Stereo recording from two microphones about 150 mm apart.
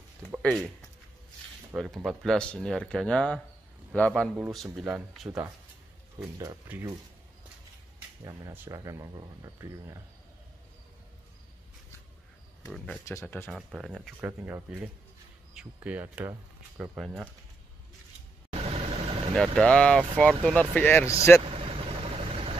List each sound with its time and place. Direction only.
0.4 s speech: 5° left (ahead or behind)
1.7 s speech: 10° right (ahead or behind)
2.0 s speech: 5° left (ahead or behind)
6.3 s speech: 25° right (ahead or behind)
8.2 s speech: 20° right (ahead or behind)
13.0 s speech: 20° left (ahead or behind)
13.5 s speech: 5° right (ahead or behind)
18.5 s vehicle: 40° right (ahead or behind)
19.3 s speech: 5° left (ahead or behind)
21.5 s vehicle: 40° right (ahead or behind)